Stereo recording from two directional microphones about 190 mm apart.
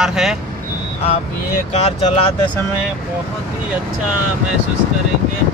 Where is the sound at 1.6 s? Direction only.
35° left (ahead or behind).